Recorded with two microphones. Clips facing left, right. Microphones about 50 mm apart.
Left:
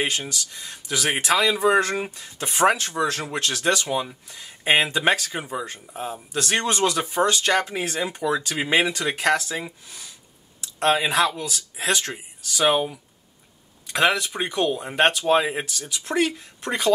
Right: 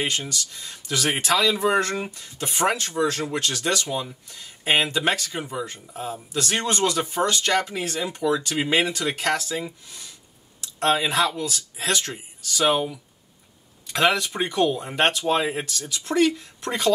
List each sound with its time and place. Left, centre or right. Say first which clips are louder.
0.0 s speech: left 1 dB; centre
3.1 s speech: even; left
13.8 s speech: even; centre